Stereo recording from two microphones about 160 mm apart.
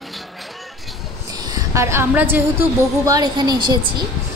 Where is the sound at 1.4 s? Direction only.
20° right (ahead or behind).